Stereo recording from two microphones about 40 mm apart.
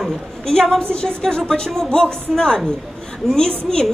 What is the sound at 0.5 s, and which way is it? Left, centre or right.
A woman's voice, centre.